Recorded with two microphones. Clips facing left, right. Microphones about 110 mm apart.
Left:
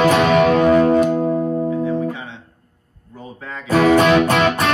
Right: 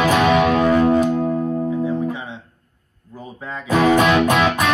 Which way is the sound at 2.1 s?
20° right (ahead or behind).